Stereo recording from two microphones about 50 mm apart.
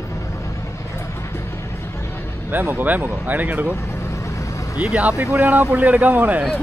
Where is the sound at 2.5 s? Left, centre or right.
Right.